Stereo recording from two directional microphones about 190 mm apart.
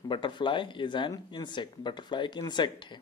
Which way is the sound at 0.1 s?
25° left (ahead or behind).